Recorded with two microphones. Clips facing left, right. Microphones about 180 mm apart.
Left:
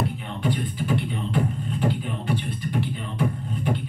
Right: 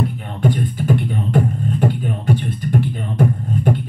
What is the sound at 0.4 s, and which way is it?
Beatboxing, 45° right (ahead or behind).